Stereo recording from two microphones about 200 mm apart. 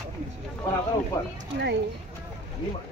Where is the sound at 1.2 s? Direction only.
15° left (ahead or behind).